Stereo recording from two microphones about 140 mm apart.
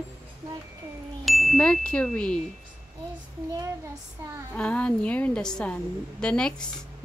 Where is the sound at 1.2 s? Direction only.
Centre (ahead or behind).